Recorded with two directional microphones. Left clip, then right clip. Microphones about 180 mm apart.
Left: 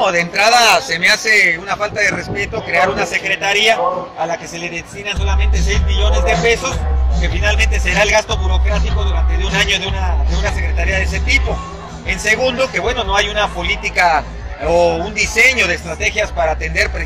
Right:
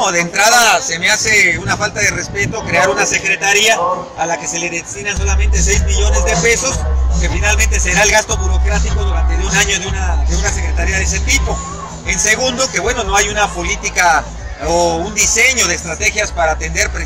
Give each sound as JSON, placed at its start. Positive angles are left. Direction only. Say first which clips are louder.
{"t": 0.0, "sound": "speech", "louder": "right 1 dB", "side_deg": 0}
{"t": 9.5, "sound": "a man's voice", "louder": "right 1 dB", "side_deg": -10}